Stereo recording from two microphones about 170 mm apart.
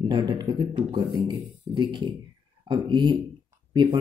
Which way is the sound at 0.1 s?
25° right (ahead or behind).